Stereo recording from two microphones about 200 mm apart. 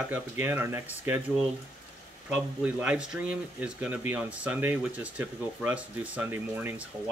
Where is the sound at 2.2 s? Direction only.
5° right (ahead or behind).